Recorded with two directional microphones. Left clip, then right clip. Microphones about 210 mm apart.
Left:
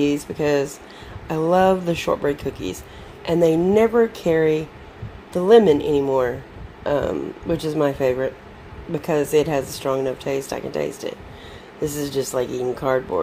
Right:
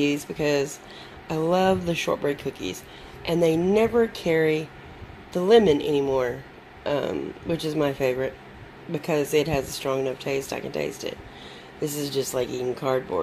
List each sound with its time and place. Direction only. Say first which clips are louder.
0.0 s a woman's voice: left 4 dB; centre (ahead or behind)